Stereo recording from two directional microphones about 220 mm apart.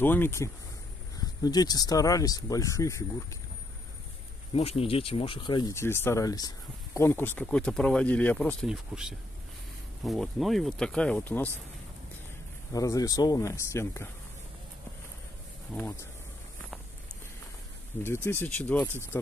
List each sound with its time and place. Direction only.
0.0 s speech: 10° left (ahead or behind)
4.5 s speech: 25° left (ahead or behind); by 11.5 s 10° left (ahead or behind)
12.7 s speech: 15° left (ahead or behind)
15.7 s speech: 10° left (ahead or behind)
18.0 s speech: 10° left (ahead or behind)